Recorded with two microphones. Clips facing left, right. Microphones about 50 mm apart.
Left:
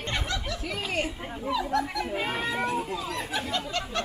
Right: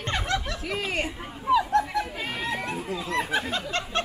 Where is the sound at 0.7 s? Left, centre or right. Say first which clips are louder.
Right 2 dB; right.